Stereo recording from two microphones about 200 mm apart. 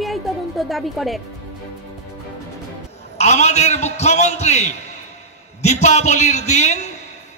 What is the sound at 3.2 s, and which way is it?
A man's voice, 35° left (ahead or behind).